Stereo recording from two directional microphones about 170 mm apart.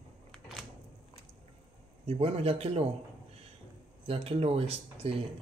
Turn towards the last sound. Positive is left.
turn(degrees=-35)  # may be behind; listen again after turning